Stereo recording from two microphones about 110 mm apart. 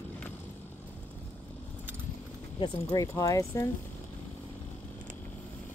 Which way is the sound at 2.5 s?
45° left (ahead or behind).